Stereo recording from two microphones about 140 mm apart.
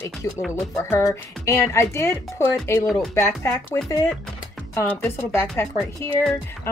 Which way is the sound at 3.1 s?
20° left (ahead or behind).